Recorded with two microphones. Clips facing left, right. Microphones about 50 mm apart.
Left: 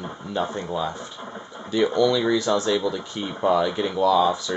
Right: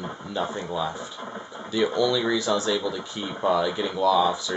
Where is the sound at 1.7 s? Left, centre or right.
Centre.